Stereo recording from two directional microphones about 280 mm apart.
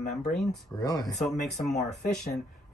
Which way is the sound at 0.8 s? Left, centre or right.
Centre.